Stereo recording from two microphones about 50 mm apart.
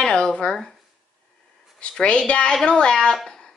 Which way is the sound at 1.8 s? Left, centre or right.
Left.